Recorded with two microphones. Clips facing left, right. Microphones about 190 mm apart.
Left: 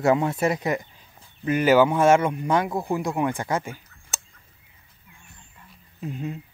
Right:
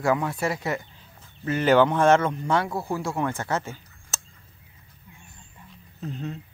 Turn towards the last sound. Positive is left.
turn(degrees=10)  # may be behind; listen again after turning